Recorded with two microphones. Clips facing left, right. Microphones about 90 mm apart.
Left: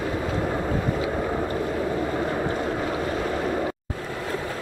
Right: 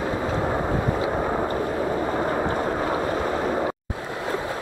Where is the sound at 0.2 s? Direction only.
20° right (ahead or behind).